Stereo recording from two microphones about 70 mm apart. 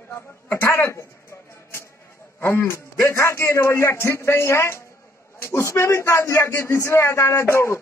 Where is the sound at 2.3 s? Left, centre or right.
Left.